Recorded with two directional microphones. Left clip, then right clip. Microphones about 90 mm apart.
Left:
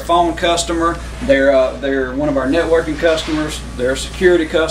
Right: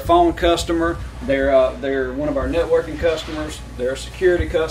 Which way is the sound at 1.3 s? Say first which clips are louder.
Left 4 dB; 75° left (ahead or behind).